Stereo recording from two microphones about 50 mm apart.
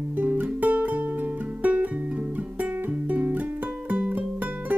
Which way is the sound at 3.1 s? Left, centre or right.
Right.